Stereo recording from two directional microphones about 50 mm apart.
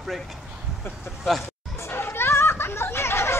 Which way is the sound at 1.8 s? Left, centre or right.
Left.